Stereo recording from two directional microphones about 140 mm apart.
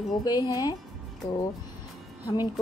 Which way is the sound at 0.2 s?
25° left (ahead or behind).